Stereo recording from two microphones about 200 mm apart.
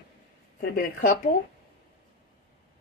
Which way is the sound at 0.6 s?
45° left (ahead or behind).